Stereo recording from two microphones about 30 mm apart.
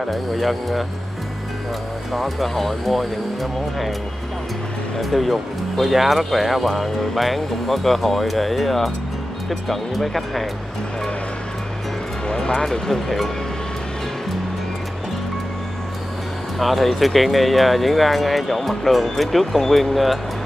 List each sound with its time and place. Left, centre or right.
0.0 s speech: centre
2.1 s speech: centre
4.9 s speech: centre
12.6 s speech: centre
16.5 s speech: centre